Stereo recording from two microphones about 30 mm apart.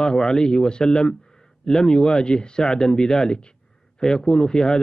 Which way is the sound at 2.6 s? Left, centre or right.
Centre.